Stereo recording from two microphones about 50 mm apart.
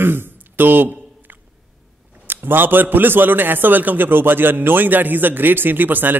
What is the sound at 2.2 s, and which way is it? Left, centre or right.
A man's voice, right.